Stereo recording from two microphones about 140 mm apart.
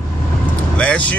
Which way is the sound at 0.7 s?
10° left (ahead or behind).